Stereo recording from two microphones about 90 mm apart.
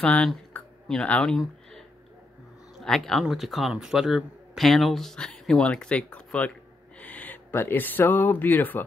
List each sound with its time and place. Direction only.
0.0 s speech: 15° left (ahead or behind)
0.5 s a sound: 10° left (ahead or behind)
2.8 s speech: 5° left (ahead or behind); by 8.8 s 20° left (ahead or behind)